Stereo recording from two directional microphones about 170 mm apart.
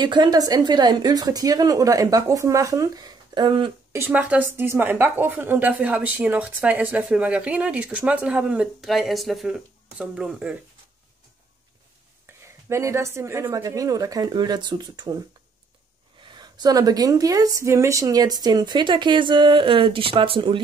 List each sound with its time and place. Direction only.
0.0 s speech: 25° right (ahead or behind)
3.9 s a woman's voice: 10° right (ahead or behind)
12.3 s a sound: 15° right (ahead or behind)
12.6 s speech: 15° right (ahead or behind)
16.2 s speech: 25° right (ahead or behind)